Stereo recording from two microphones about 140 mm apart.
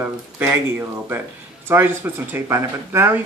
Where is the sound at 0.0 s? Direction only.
15° right (ahead or behind).